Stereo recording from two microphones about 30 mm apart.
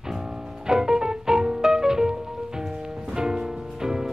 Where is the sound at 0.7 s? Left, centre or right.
Right.